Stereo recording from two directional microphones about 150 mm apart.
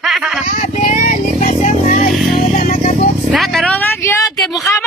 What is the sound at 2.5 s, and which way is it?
Music, 55° left (ahead or behind).